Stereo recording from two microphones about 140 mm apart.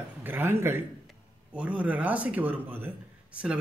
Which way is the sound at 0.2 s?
15° right (ahead or behind).